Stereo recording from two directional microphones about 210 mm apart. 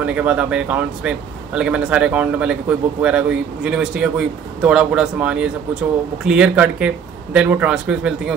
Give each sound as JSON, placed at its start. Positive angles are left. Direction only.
{"t": 0.0, "sound": "speech", "side_deg": -5}